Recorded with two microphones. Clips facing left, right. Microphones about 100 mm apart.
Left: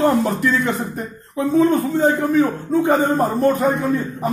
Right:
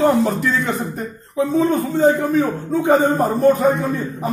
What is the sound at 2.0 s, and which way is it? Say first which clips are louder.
A man's voice: right 3 dB; 10° right (ahead or behind).